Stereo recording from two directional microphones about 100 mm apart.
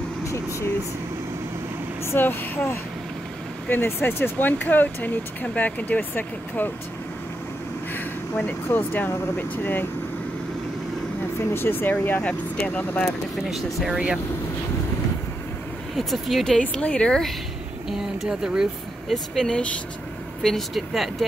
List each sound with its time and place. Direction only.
0.3 s vehicle: 30° left (ahead or behind)
2.0 s speech: 20° left (ahead or behind)
7.9 s speech: 15° left (ahead or behind)
11.5 s speech: 20° left (ahead or behind)
13.5 s speech: 5° right (ahead or behind)
16.0 s speech: centre (ahead or behind)
16.5 s speech: 10° left (ahead or behind)
17.8 s speech: 5° right (ahead or behind)